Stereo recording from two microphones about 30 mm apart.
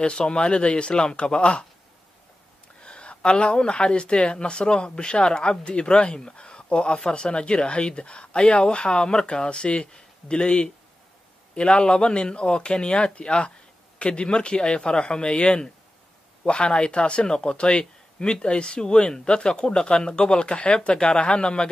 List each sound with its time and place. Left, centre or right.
0.1 s speech: left
2.8 s speech: left